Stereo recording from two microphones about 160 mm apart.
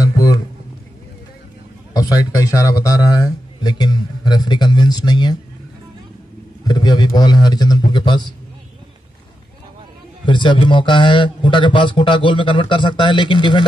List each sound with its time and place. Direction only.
0.0 s a sound: 20° left (ahead or behind)
2.0 s a man's voice: 20° left (ahead or behind)
6.6 s a man's voice: 25° left (ahead or behind)
10.2 s a man's voice: 30° left (ahead or behind)